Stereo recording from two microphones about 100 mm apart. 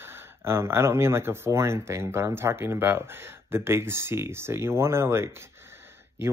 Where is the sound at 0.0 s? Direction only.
25° right (ahead or behind).